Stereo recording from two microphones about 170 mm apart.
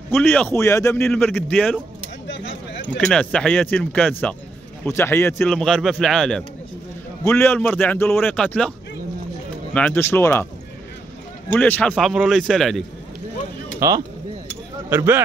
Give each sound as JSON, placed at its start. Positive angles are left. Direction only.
{"t": 0.2, "sound": "speech", "side_deg": 10}
{"t": 2.2, "sound": "a sound", "side_deg": 90}
{"t": 3.0, "sound": "speech", "side_deg": 5}
{"t": 5.5, "sound": "a man's voice", "side_deg": 5}
{"t": 9.8, "sound": "speech", "side_deg": 10}
{"t": 11.5, "sound": "speech", "side_deg": 10}
{"t": 11.9, "sound": "a man's voice", "side_deg": -5}
{"t": 13.7, "sound": "speech", "side_deg": -20}